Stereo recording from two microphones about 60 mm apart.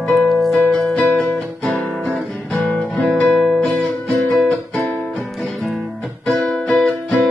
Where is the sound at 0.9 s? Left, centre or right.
Centre.